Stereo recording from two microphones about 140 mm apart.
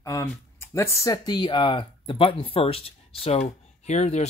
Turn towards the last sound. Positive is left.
turn(degrees=55)  # may be behind; listen again after turning